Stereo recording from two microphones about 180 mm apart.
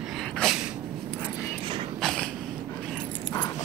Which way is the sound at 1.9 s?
5° left (ahead or behind).